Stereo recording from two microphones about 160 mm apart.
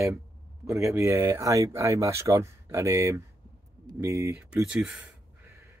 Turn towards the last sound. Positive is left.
turn(degrees=-20)  # may be behind; listen again after turning